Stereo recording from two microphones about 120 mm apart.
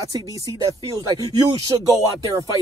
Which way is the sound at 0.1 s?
30° right (ahead or behind).